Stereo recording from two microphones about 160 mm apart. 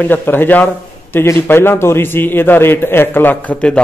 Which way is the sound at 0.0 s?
10° left (ahead or behind).